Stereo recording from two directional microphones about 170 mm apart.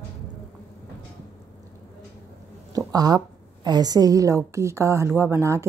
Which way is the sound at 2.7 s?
20° right (ahead or behind).